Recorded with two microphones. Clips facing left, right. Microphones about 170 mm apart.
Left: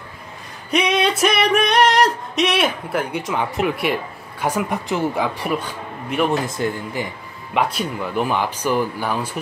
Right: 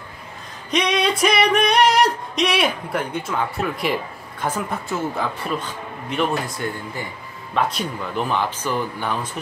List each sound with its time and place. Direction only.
0.7 s singing: 5° left (ahead or behind)
4.4 s speech: 10° left (ahead or behind)
7.5 s speech: 10° left (ahead or behind)